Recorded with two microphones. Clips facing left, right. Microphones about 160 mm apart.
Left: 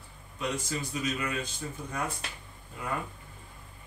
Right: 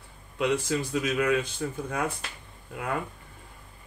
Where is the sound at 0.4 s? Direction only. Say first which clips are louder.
Right 7 dB; 70° right (ahead or behind).